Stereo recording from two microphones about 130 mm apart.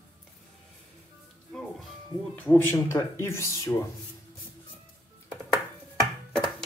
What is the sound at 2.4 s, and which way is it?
Speech, 15° left (ahead or behind).